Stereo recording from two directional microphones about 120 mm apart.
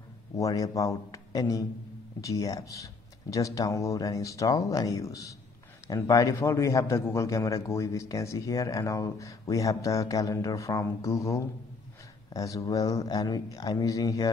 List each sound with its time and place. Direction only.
0.4 s a man's voice: 25° left (ahead or behind)